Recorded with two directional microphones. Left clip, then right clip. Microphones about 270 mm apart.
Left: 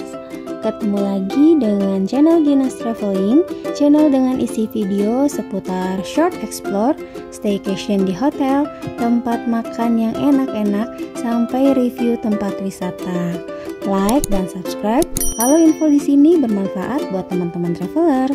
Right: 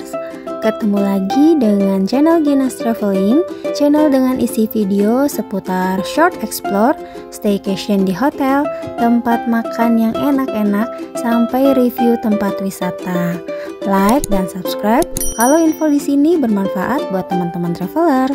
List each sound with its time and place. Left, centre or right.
0.7 s a child's voice: right